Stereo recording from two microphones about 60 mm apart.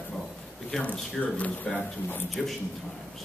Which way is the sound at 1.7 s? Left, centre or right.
Left.